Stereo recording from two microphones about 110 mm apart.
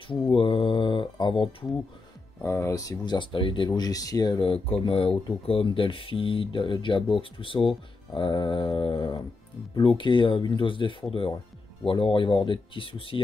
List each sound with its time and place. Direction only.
0.3 s mantra: 50° left (ahead or behind)
2.4 s speech: 25° left (ahead or behind)
4.4 s speech: 60° left (ahead or behind)